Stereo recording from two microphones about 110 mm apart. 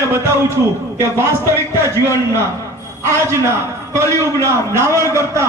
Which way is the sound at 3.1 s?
25° right (ahead or behind).